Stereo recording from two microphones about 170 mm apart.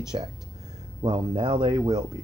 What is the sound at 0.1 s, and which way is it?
Speech, 25° right (ahead or behind).